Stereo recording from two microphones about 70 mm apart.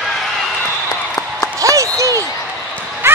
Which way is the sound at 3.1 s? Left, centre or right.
Right.